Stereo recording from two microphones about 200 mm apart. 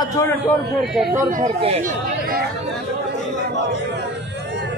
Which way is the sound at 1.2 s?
40° right (ahead or behind).